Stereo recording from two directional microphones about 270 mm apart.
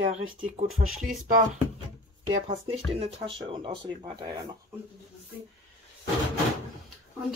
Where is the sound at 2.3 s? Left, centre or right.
Centre.